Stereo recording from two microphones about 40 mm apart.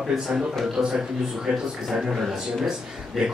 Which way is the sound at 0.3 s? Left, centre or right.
Centre.